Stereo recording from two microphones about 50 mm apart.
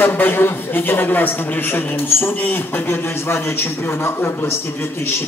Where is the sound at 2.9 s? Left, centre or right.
Left.